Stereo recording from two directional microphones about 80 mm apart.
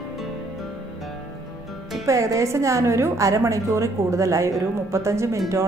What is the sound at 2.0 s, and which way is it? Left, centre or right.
Speech, right.